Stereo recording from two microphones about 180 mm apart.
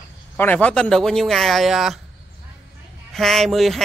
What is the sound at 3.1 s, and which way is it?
Speech, centre (ahead or behind).